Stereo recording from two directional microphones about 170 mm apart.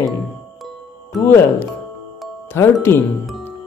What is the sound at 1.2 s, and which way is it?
Speech, 15° left (ahead or behind).